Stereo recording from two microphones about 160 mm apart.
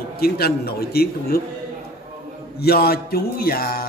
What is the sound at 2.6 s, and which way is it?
A man's voice, 80° left.